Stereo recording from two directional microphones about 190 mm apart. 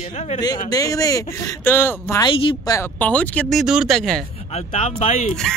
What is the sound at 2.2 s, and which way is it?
Speech, 25° left (ahead or behind).